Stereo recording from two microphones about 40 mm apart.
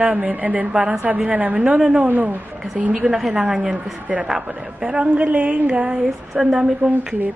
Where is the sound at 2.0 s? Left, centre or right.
Right.